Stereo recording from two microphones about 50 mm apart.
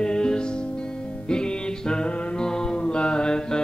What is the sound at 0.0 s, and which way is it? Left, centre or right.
Music, centre.